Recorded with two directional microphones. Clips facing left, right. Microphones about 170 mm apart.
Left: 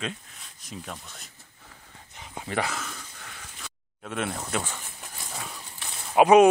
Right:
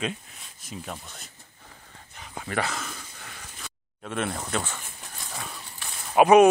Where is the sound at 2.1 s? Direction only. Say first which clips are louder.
Even; 20° left (ahead or behind).